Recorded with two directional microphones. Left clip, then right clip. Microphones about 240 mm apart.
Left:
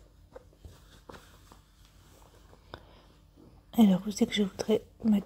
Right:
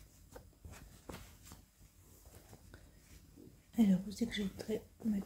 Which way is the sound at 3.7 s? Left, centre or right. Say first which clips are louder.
Left 9 dB; left.